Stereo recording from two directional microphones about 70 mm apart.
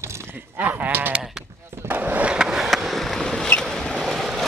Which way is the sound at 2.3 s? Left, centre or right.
Centre.